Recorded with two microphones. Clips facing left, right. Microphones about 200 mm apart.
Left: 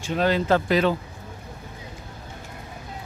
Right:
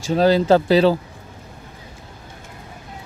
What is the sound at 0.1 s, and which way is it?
Speech, 35° right (ahead or behind).